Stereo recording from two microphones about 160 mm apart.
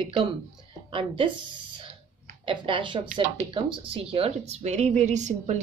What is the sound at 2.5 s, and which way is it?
A woman's voice, 30° right (ahead or behind).